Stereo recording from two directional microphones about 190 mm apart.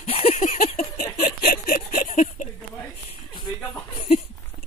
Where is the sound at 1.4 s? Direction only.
50° left (ahead or behind).